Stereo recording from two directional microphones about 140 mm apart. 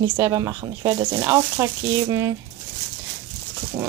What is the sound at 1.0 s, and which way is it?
Speech, 35° right (ahead or behind).